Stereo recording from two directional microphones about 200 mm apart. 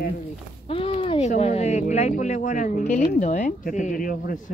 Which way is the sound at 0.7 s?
30° left (ahead or behind).